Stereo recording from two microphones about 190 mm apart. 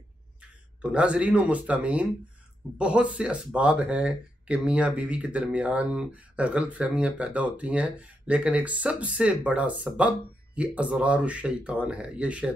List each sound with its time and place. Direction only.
0.8 s speech: 5° right (ahead or behind)